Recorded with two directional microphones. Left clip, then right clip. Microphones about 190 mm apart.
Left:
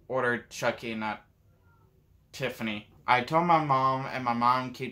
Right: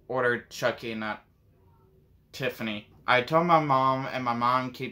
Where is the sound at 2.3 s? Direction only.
10° right (ahead or behind).